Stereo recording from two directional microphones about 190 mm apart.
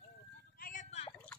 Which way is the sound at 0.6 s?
40° left (ahead or behind).